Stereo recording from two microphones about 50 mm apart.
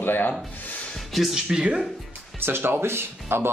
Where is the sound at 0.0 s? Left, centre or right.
Left.